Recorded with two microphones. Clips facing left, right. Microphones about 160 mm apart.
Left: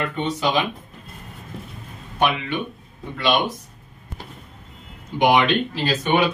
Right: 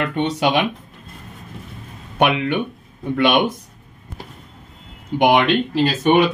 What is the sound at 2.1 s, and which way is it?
Speech, 65° right (ahead or behind).